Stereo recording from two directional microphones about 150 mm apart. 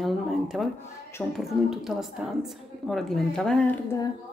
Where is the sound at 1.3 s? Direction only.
Centre (ahead or behind).